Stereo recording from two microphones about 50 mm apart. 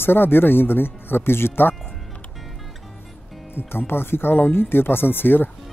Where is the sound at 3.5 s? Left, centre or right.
Left.